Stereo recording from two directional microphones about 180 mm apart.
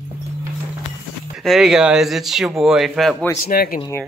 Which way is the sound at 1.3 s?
Centre (ahead or behind).